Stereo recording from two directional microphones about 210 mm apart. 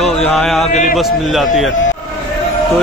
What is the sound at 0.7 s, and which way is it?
Speech, 35° left (ahead or behind).